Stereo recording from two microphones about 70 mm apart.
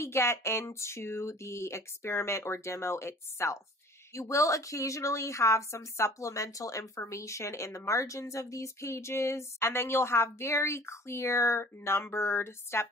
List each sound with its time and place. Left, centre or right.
0.0 s a woman's voice: left